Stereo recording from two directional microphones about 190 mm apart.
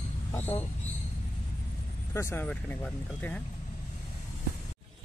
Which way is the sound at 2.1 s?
10° left (ahead or behind).